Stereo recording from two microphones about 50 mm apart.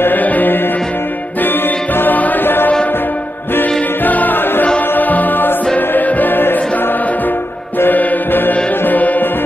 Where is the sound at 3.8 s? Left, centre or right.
Left.